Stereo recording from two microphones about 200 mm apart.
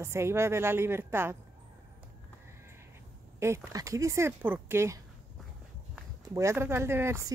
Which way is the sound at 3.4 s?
15° right (ahead or behind).